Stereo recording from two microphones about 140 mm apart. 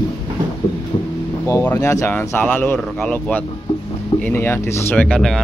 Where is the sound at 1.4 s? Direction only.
20° left (ahead or behind).